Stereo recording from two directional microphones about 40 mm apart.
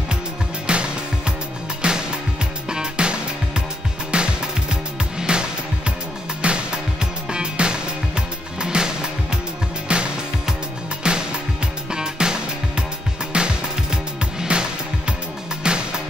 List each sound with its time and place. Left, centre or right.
0.7 s music: right